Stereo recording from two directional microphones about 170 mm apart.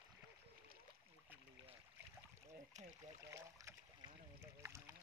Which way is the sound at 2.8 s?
40° right (ahead or behind).